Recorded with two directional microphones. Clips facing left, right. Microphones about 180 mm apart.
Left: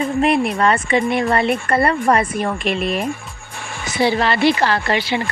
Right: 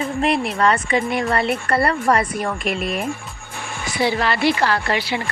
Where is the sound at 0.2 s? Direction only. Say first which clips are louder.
Left 2 dB; 20° left (ahead or behind).